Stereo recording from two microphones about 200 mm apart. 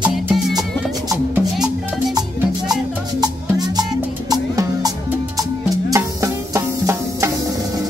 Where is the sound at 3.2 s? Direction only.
20° right (ahead or behind).